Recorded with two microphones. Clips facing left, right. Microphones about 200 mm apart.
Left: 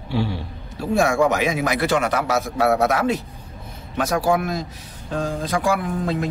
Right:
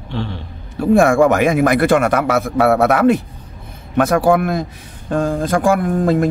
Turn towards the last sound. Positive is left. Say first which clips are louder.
# right 8 dB
turn(degrees=-50)  # may be behind; listen again after turning